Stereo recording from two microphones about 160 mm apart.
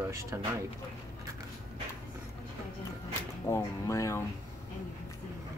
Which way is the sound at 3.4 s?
20° left (ahead or behind).